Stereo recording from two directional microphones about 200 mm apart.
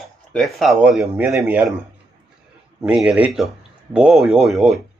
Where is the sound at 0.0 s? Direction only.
Centre (ahead or behind).